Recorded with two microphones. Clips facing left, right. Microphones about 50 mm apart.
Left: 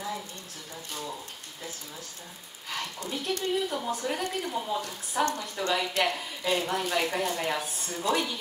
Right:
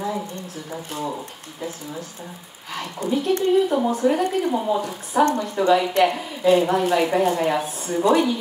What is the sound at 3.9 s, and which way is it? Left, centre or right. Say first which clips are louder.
A woman's voice: right 11 dB; centre.